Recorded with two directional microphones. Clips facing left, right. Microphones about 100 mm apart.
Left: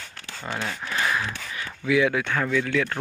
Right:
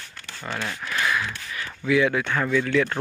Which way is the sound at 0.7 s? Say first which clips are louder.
Right 1 dB; 25° left (ahead or behind).